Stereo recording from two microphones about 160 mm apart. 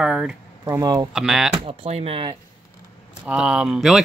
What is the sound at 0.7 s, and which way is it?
Speech, 25° right (ahead or behind).